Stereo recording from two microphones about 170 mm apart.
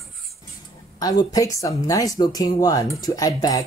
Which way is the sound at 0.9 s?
20° left (ahead or behind).